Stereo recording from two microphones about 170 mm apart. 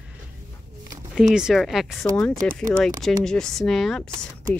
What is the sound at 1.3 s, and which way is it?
Speech, centre (ahead or behind).